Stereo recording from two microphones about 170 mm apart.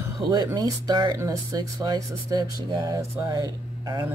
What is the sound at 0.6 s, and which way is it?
Speech, 25° right (ahead or behind).